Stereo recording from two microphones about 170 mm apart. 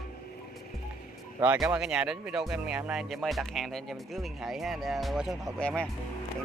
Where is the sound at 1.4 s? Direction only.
10° right (ahead or behind).